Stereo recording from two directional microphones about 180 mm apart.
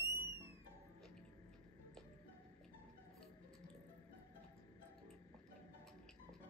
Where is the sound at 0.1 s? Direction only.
15° right (ahead or behind).